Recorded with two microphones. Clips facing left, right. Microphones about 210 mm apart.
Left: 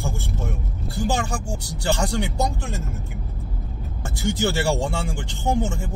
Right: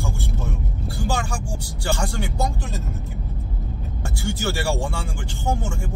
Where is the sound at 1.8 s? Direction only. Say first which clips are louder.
Left 3 dB; 15° left (ahead or behind).